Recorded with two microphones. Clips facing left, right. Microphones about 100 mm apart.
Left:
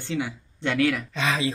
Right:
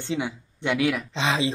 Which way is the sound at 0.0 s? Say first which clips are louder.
Right 1 dB; 20° right (ahead or behind).